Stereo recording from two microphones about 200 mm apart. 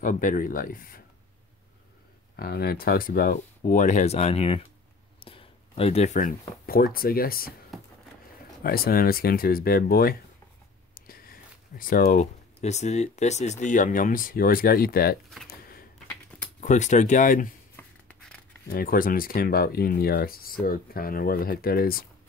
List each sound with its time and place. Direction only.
0.0 s speech: 40° left (ahead or behind)
2.3 s speech: 50° left (ahead or behind)
8.6 s speech: 50° left (ahead or behind)
11.0 s a sound: 45° left (ahead or behind)
12.5 s speech: 35° left (ahead or behind)
16.6 s speech: 35° left (ahead or behind)
17.7 s a sound: 5° left (ahead or behind)
18.7 s speech: 45° left (ahead or behind)